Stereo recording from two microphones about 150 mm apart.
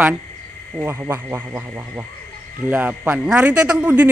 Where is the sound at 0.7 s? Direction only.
15° right (ahead or behind).